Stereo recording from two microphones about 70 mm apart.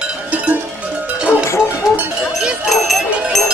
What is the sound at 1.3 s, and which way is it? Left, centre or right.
Music, left.